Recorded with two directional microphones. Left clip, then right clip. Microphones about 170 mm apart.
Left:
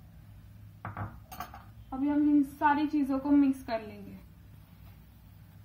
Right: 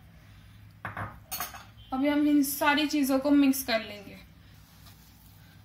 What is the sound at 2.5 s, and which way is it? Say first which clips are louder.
A woman's voice: right 1 dB; 65° right (ahead or behind).